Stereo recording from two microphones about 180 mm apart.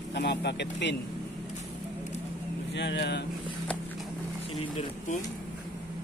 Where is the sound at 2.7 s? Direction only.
75° left (ahead or behind).